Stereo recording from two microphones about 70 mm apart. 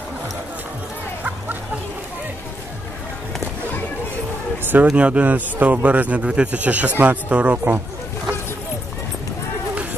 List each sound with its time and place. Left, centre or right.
4.8 s a man's voice: centre